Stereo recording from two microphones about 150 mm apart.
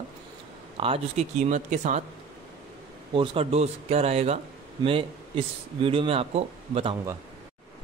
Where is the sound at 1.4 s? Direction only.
55° right (ahead or behind).